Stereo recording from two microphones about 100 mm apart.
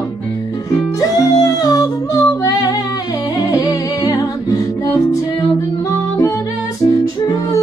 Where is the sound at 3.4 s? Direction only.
40° left (ahead or behind).